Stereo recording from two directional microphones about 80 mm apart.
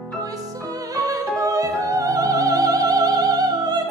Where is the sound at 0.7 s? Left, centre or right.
Right.